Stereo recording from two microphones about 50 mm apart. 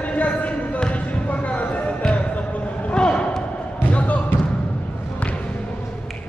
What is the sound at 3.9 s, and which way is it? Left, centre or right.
Basketball bounce, left.